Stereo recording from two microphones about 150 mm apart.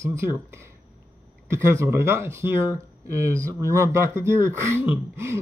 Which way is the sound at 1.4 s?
20° right (ahead or behind).